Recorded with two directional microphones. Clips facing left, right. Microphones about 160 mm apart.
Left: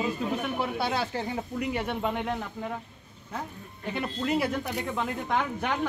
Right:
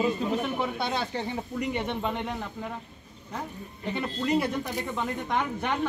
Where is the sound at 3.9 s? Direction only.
5° left (ahead or behind).